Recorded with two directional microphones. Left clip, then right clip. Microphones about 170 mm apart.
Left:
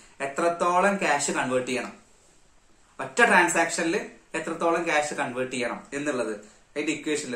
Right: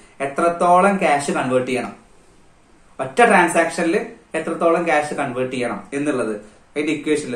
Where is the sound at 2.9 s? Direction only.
15° left (ahead or behind).